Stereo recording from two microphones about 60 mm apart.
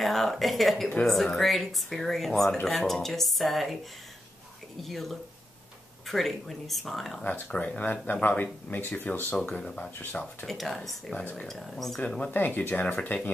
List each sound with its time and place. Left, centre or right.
0.0 s speech: centre
0.8 s speech: centre
4.8 s speech: centre
7.2 s speech: left
7.5 s speech: centre
8.1 s speech: left
10.4 s speech: centre
11.4 s speech: centre
12.3 s speech: left